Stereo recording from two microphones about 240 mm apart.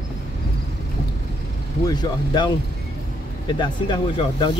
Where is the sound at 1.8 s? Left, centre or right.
Centre.